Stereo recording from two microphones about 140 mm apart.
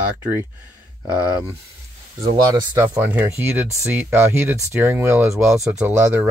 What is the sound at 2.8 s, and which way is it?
Speech, 15° right (ahead or behind).